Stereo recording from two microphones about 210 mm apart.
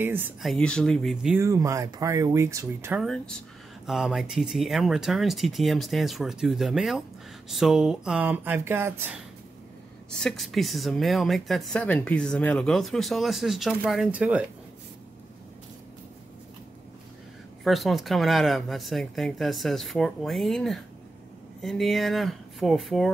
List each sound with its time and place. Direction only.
0.0 s speech: 10° right (ahead or behind)
1.4 s speech: 15° right (ahead or behind)
3.0 s speech: 5° left (ahead or behind)
10.1 s speech: centre (ahead or behind)
17.6 s speech: centre (ahead or behind)